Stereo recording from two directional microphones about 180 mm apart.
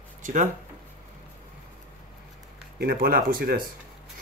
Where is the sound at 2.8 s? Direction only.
55° right (ahead or behind).